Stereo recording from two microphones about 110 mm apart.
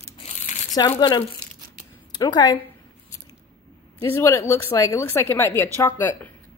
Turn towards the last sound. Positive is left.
turn(degrees=25)  # may be behind; listen again after turning